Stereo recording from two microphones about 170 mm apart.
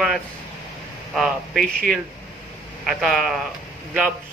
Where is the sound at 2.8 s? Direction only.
Centre (ahead or behind).